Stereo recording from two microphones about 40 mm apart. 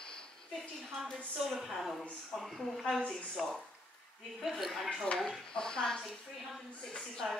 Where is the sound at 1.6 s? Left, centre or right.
Centre.